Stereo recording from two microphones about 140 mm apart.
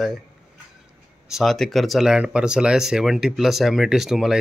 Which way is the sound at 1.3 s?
Centre (ahead or behind).